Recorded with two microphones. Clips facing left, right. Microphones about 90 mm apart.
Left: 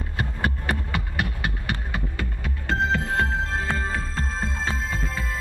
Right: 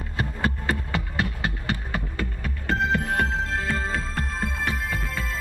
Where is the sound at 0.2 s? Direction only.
20° left (ahead or behind).